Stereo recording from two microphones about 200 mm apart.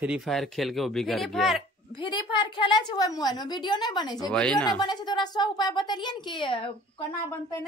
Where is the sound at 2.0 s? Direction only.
25° left (ahead or behind).